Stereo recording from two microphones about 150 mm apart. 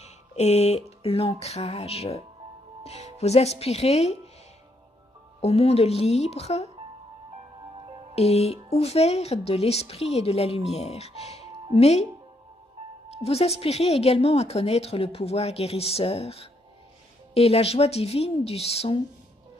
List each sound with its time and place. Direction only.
0.0 s a sound: 45° left (ahead or behind)
2.8 s speech: 45° left (ahead or behind)
5.4 s speech: 45° left (ahead or behind)
7.7 s music: 35° right (ahead or behind)
8.1 s speech: 45° left (ahead or behind)
13.2 s speech: 40° left (ahead or behind)